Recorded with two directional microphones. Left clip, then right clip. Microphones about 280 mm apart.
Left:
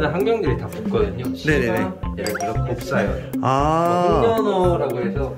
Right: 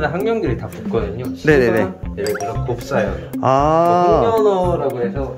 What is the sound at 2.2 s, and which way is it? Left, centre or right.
Speech, centre.